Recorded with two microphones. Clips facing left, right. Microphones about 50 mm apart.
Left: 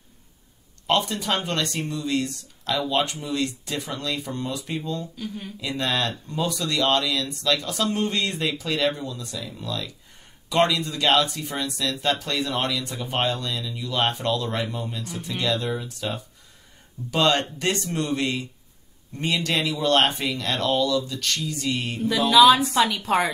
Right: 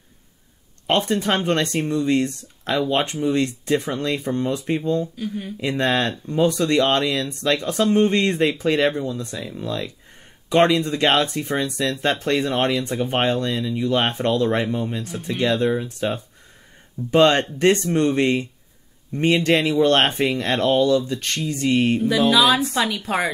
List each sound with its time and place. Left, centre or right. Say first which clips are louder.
0.8 s speech: right 3 dB; right
5.1 s speech: right 5 dB; centre
5.6 s speech: right 5 dB; right
22.3 s a woman's voice: left 7 dB; centre